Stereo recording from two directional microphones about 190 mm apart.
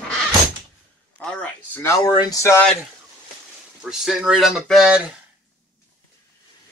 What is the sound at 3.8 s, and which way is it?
Speech, centre (ahead or behind).